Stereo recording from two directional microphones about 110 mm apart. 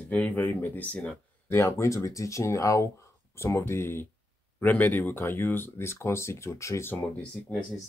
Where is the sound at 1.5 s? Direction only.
25° left (ahead or behind).